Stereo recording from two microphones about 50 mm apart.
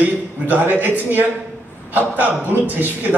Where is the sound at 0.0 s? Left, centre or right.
Right.